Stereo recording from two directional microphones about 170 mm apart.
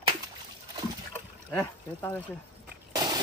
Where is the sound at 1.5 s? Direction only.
10° left (ahead or behind).